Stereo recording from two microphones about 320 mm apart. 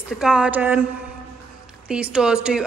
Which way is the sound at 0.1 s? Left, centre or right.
Centre.